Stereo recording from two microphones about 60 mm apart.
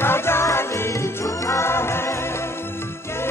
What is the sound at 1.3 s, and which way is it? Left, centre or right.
Music, left.